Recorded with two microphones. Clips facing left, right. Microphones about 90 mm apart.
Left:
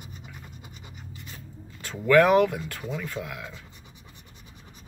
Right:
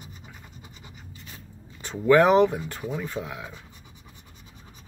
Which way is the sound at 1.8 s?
20° right (ahead or behind).